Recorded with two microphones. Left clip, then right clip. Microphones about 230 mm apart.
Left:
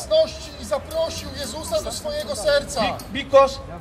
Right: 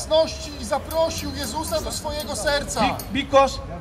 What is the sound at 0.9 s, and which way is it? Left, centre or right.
Speech, right.